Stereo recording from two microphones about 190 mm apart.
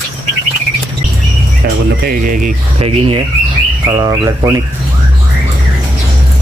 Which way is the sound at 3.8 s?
20° right (ahead or behind).